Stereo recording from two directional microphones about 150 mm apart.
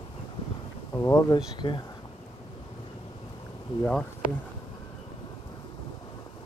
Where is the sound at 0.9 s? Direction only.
20° left (ahead or behind).